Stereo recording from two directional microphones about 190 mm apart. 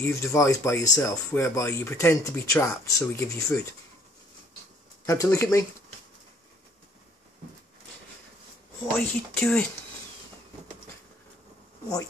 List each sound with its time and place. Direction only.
0.0 s speech: 15° left (ahead or behind)
5.0 s speech: 15° left (ahead or behind)
9.0 s speech: 5° left (ahead or behind)